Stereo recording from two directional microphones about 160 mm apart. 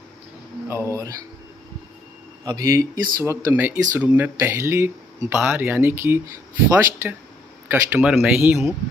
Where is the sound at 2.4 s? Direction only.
20° right (ahead or behind).